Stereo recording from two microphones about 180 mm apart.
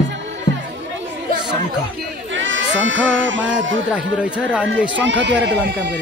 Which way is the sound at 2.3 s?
90° right.